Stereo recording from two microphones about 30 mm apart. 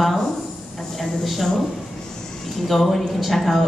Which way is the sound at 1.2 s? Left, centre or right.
Centre.